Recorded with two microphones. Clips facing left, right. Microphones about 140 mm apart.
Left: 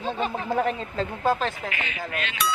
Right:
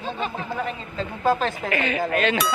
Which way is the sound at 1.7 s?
45° right (ahead or behind).